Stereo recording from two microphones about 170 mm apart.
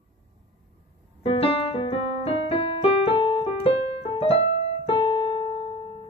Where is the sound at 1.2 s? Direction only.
35° left (ahead or behind).